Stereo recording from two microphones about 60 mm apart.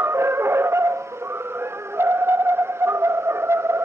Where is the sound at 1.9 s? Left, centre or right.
Right.